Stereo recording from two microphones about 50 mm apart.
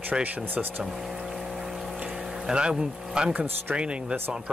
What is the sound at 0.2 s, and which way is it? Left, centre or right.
Speech, right.